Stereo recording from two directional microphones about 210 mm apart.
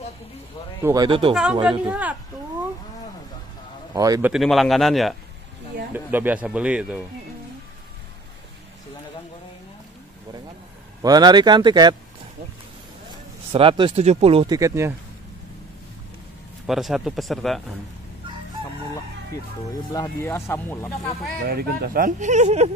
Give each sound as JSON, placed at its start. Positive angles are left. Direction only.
{"t": 0.8, "sound": "speech", "side_deg": -20}
{"t": 1.3, "sound": "speech", "side_deg": -5}
{"t": 3.9, "sound": "speech", "side_deg": -15}
{"t": 4.3, "sound": "speech", "side_deg": 0}
{"t": 11.0, "sound": "speech", "side_deg": -20}
{"t": 13.5, "sound": "speech", "side_deg": -25}
{"t": 16.6, "sound": "speech", "side_deg": 0}
{"t": 19.7, "sound": "speech", "side_deg": 15}
{"t": 21.5, "sound": "speech", "side_deg": -45}